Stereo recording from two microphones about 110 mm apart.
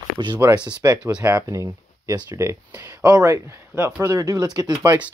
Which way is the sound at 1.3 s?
30° right (ahead or behind).